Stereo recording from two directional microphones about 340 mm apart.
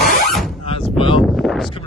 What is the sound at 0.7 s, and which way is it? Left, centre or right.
Speech, centre.